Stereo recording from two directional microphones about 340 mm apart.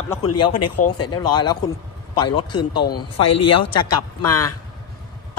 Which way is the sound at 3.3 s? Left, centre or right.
Left.